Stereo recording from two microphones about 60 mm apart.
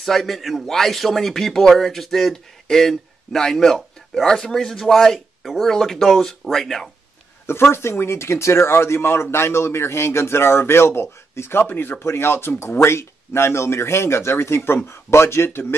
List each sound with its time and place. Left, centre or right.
0.0 s speech: centre
7.4 s speech: left
12.0 s speech: left